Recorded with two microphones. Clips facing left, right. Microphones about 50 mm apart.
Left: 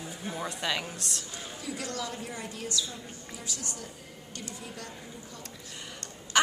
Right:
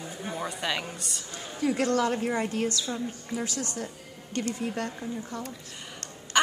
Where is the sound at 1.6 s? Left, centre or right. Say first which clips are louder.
Right 12 dB; right.